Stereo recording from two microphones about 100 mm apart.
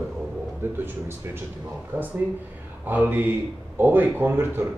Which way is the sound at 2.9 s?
20° right (ahead or behind).